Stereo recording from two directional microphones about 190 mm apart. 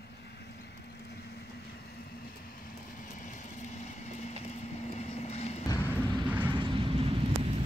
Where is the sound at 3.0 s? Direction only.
40° left (ahead or behind).